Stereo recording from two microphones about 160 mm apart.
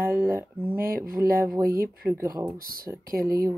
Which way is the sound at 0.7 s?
65° right (ahead or behind).